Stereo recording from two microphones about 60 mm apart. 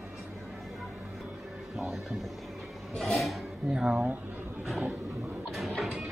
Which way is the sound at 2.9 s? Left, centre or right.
Centre.